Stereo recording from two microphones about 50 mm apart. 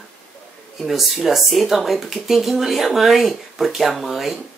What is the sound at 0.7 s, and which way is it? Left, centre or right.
Speech, centre.